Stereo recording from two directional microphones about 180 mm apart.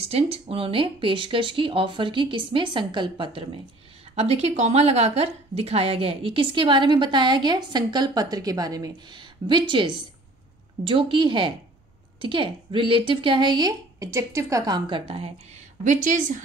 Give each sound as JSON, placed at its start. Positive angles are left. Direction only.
{"t": 0.0, "sound": "a woman's voice", "side_deg": -35}